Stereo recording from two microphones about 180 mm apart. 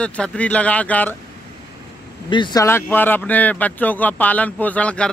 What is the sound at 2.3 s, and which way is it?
Speech, 25° left (ahead or behind).